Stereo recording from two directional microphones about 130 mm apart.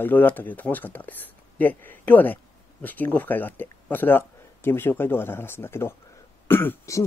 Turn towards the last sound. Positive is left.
turn(degrees=20)  # may be behind; listen again after turning